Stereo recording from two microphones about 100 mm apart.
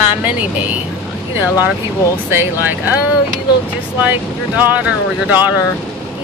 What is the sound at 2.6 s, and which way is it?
Speech, 20° right (ahead or behind).